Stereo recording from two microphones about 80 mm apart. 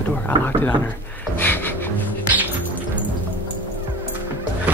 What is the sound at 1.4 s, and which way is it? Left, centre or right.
Speech, left.